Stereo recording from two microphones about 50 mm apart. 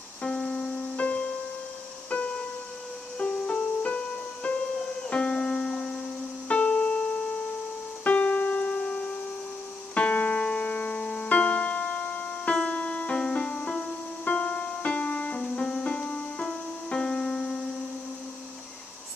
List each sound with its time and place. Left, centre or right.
0.2 s music: centre
8.0 s keyboard: left
9.9 s music: left
11.2 s keyboard: left
12.5 s music: left